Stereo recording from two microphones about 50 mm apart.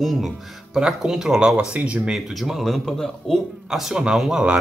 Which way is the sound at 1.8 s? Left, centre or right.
Right.